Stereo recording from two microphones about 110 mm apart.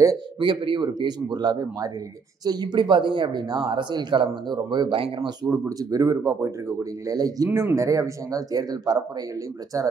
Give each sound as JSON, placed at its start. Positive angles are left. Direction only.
{"t": 0.4, "sound": "speech", "side_deg": -45}
{"t": 5.4, "sound": "speech", "side_deg": -35}
{"t": 7.4, "sound": "speech", "side_deg": -20}